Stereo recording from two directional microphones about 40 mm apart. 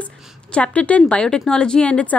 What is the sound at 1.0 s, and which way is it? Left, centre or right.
Speech, left.